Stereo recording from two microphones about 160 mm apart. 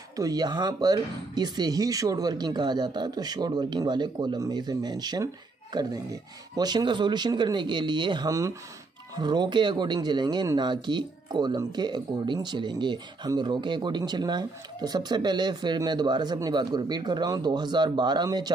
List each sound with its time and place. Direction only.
0.1 s speech: 25° right (ahead or behind)